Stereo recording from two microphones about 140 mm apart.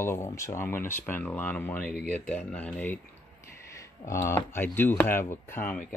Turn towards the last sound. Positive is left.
turn(degrees=15)  # may be behind; listen again after turning